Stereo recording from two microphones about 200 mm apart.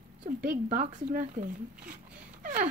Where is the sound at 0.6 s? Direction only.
40° right (ahead or behind).